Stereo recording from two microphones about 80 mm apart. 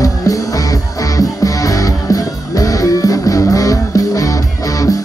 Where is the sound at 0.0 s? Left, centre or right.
Left.